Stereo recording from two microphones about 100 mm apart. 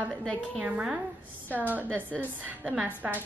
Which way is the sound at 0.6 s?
10° right (ahead or behind).